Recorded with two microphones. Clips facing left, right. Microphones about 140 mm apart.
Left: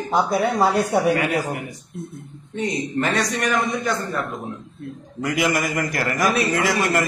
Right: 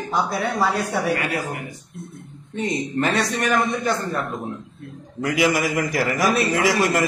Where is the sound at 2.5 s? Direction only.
Centre (ahead or behind).